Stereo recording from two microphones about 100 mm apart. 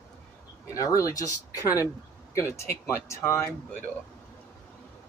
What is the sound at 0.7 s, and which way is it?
Speech, 35° left (ahead or behind).